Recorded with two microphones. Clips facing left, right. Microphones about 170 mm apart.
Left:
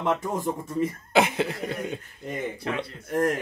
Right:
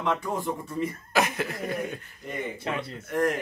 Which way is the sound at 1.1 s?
25° left (ahead or behind).